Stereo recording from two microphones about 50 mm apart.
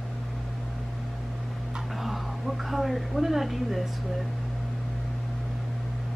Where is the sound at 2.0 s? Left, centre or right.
Centre.